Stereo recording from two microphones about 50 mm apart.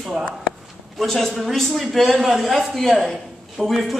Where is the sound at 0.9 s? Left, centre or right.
Centre.